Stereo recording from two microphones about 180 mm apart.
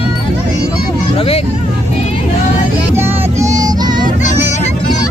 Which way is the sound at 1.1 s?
30° left (ahead or behind).